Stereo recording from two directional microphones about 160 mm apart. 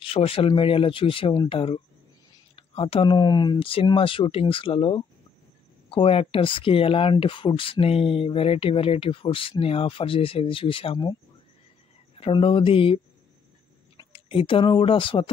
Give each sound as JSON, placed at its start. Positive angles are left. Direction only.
{"t": 0.0, "sound": "speech", "side_deg": 35}
{"t": 12.2, "sound": "speech", "side_deg": 35}